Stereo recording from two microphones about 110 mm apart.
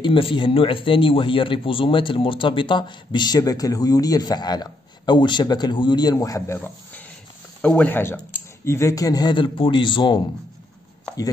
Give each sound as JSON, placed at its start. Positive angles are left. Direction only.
{"t": 0.0, "sound": "speech", "side_deg": 50}